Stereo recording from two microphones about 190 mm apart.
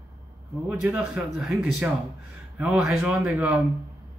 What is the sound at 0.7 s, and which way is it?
Speech, 5° right (ahead or behind).